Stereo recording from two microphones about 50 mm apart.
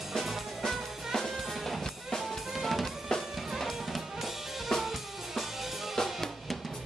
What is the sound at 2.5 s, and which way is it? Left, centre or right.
Drum kit, centre.